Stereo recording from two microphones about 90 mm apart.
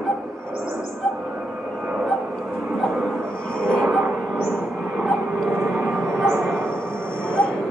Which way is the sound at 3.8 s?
5° right (ahead or behind).